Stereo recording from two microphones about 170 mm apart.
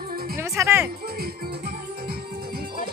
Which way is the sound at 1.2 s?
65° right (ahead or behind).